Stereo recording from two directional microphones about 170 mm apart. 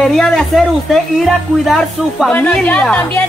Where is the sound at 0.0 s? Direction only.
Centre (ahead or behind).